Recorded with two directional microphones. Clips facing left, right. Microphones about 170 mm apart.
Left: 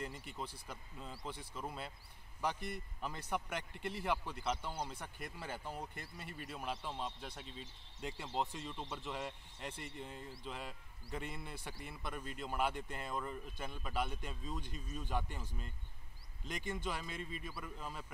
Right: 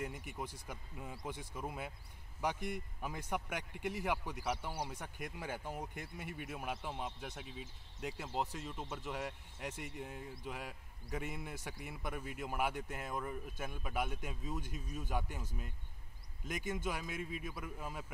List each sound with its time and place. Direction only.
0.0 s speech: 10° right (ahead or behind)
16.4 s speech: 10° right (ahead or behind)